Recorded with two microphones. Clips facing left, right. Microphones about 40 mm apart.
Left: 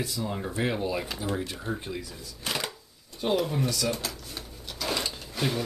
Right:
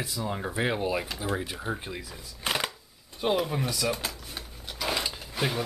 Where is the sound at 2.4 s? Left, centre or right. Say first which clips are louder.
Right 3 dB; right.